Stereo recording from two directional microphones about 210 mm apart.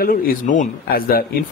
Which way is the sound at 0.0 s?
40° left (ahead or behind).